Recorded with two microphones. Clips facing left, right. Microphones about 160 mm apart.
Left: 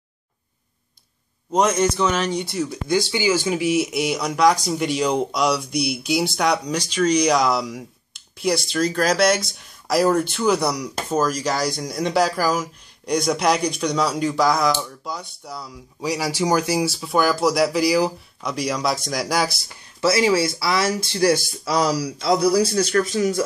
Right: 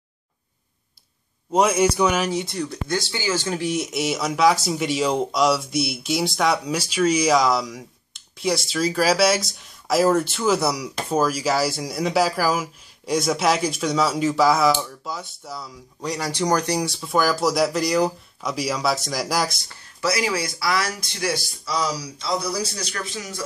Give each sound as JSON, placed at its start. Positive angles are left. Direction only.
{"t": 1.5, "sound": "speech", "side_deg": -10}
{"t": 20.0, "sound": "speech", "side_deg": 25}
{"t": 21.6, "sound": "speech", "side_deg": 60}
{"t": 22.8, "sound": "speech", "side_deg": 45}